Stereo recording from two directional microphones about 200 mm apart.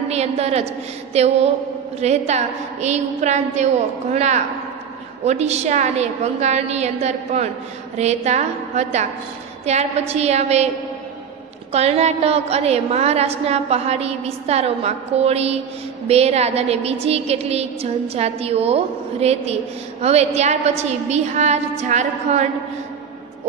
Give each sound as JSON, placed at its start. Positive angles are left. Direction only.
{"t": 0.1, "sound": "a woman's voice", "side_deg": -30}
{"t": 11.7, "sound": "a woman's voice", "side_deg": -30}